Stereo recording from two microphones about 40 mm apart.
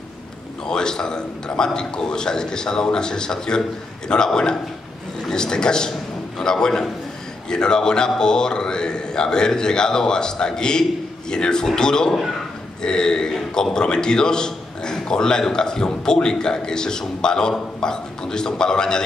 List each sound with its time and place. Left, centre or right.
0.7 s a man's voice: centre